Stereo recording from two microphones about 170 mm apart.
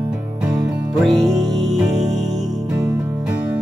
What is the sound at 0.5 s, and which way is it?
Music, centre (ahead or behind).